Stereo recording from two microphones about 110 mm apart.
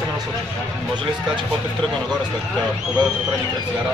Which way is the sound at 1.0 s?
45° right (ahead or behind).